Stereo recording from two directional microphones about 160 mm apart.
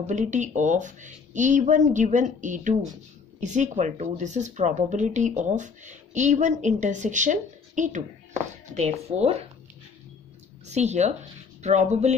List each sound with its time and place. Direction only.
0.0 s a woman's voice: 50° right (ahead or behind)
10.7 s a woman's voice: 45° right (ahead or behind)